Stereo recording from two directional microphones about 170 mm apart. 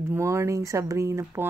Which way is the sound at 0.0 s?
15° right (ahead or behind).